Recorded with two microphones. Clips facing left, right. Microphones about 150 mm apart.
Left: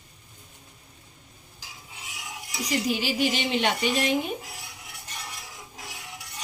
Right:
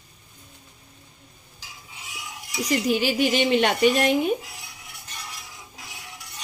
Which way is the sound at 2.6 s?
55° right (ahead or behind).